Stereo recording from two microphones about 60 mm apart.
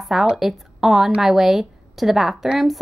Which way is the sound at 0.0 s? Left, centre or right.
Centre.